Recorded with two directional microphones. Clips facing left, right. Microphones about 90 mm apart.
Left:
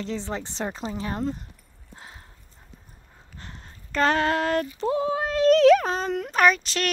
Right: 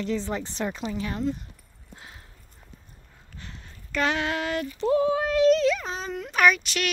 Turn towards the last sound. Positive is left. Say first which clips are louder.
# left 1 dB
turn(degrees=35)  # may be behind; listen again after turning